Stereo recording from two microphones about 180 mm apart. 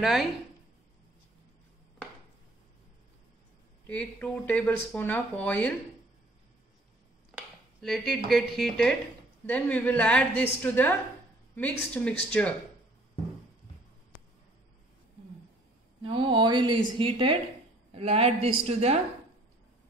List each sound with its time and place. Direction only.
0.0 s speech: centre (ahead or behind)
3.8 s speech: 10° left (ahead or behind)
7.2 s a sound: centre (ahead or behind)
8.3 s speech: centre (ahead or behind)
16.0 s a woman's voice: 30° right (ahead or behind)